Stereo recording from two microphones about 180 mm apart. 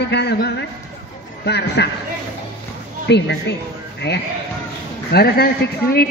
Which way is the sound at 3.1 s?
70° left (ahead or behind).